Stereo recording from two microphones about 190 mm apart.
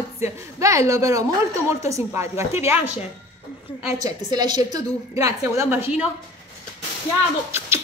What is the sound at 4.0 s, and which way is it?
A woman's voice, 20° right (ahead or behind).